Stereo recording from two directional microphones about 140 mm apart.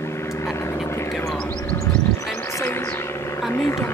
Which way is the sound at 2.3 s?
20° left (ahead or behind).